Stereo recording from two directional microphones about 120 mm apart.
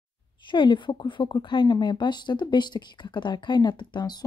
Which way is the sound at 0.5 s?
40° left (ahead or behind).